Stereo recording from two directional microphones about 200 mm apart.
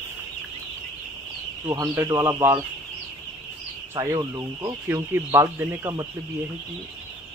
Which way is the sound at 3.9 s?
15° right (ahead or behind).